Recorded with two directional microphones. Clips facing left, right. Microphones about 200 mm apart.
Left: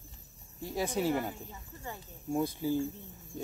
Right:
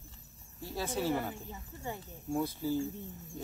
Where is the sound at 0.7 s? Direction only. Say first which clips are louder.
Left 3 dB; 15° left (ahead or behind).